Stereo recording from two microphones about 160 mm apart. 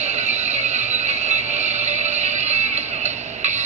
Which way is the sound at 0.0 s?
45° right (ahead or behind).